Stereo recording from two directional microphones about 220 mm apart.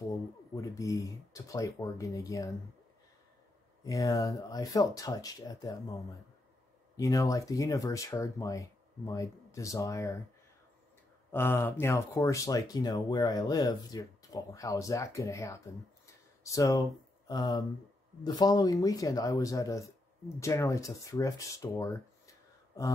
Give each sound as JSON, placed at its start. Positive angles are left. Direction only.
{"t": 0.6, "sound": "speech", "side_deg": 15}
{"t": 3.8, "sound": "speech", "side_deg": 15}
{"t": 7.0, "sound": "speech", "side_deg": 15}
{"t": 11.3, "sound": "speech", "side_deg": 10}